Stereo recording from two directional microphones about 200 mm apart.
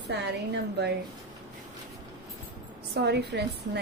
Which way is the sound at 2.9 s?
55° right (ahead or behind).